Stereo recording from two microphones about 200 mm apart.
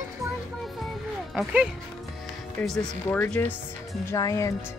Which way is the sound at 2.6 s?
10° left (ahead or behind).